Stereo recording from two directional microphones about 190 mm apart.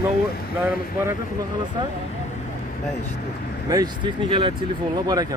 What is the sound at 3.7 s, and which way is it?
Speech, 20° right (ahead or behind).